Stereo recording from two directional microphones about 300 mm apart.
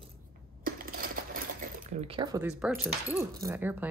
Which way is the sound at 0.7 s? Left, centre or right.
Right.